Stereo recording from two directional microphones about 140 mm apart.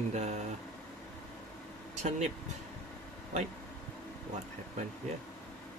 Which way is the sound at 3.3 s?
55° right (ahead or behind).